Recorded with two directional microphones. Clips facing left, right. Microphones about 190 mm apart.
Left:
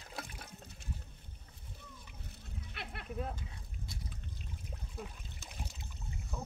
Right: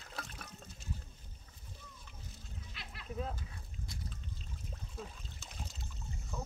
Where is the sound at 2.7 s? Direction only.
60° left (ahead or behind).